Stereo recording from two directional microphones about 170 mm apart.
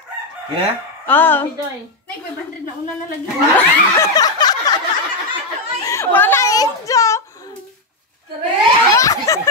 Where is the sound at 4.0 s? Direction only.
20° left (ahead or behind).